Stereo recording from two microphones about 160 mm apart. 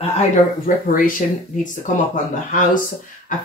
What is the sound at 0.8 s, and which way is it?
Speech, 60° left (ahead or behind).